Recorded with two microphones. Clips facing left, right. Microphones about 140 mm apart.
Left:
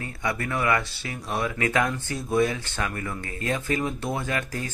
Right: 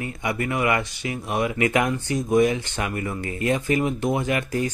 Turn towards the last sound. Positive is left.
turn(degrees=-15)  # may be behind; listen again after turning